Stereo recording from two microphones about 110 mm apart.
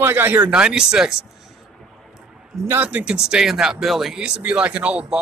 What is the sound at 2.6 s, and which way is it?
Speech, 15° right (ahead or behind).